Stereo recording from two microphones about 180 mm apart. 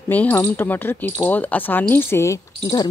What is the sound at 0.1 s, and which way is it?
Speech, 10° left (ahead or behind).